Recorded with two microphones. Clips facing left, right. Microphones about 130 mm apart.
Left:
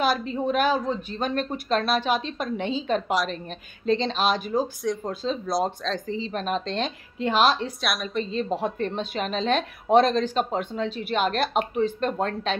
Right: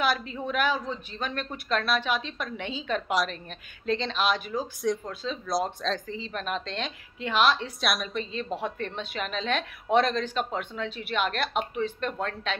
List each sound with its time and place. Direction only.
0.0 s a woman's voice: 35° left (ahead or behind)
7.8 s a woman's voice: centre (ahead or behind)
8.2 s a woman's voice: 35° left (ahead or behind)